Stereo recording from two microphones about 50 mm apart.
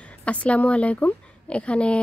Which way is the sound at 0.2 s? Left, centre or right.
Left.